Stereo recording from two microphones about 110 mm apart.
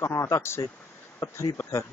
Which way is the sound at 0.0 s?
25° left (ahead or behind).